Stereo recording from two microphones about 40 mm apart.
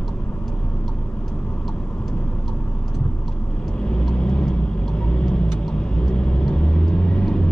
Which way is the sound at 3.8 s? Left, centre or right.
Left.